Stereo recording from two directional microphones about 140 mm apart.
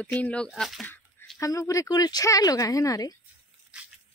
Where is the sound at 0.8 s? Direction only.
15° left (ahead or behind).